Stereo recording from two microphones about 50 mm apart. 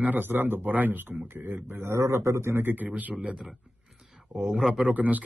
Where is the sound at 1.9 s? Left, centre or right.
Right.